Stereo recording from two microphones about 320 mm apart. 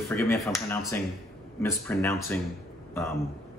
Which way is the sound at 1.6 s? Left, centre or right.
Centre.